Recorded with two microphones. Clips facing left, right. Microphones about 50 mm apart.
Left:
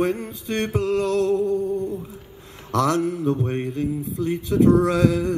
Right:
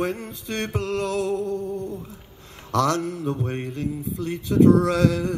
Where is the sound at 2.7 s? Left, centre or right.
Centre.